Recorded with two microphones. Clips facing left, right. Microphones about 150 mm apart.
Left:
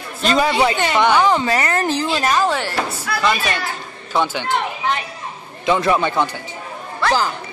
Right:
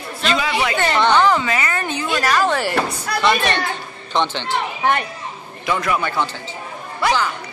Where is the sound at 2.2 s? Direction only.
20° left (ahead or behind).